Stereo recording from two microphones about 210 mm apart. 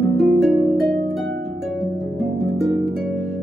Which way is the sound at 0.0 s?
Centre (ahead or behind).